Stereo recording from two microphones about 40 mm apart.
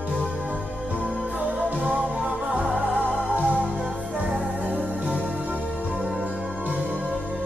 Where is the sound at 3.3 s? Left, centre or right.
Right.